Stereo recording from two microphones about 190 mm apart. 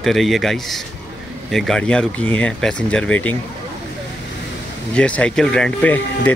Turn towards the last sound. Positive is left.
turn(degrees=5)  # may be behind; listen again after turning